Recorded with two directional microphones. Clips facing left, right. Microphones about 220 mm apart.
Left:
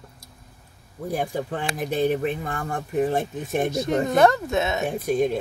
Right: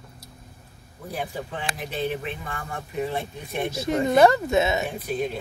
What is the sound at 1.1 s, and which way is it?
Speech, 45° left (ahead or behind).